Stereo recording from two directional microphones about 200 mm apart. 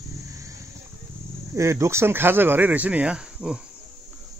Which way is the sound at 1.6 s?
15° right (ahead or behind).